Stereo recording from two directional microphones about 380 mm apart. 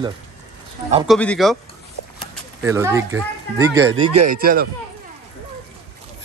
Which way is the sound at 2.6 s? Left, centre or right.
Centre.